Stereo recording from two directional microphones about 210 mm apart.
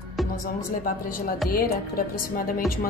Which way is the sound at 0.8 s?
45° left (ahead or behind).